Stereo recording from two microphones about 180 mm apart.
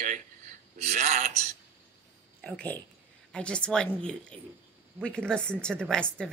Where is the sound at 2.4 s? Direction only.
5° left (ahead or behind).